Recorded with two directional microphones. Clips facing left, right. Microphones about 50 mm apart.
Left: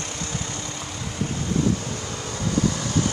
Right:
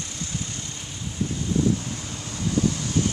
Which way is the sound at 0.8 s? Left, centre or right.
Left.